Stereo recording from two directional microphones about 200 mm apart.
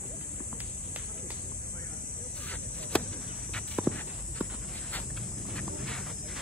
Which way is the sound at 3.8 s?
5° right (ahead or behind).